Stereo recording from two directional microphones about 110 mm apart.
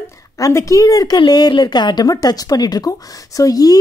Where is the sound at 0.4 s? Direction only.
30° left (ahead or behind).